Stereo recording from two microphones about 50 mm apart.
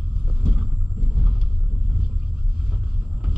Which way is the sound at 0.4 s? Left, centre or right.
Centre.